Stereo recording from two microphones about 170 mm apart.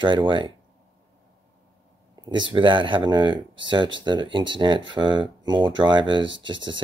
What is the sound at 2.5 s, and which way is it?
Speech, 30° right (ahead or behind).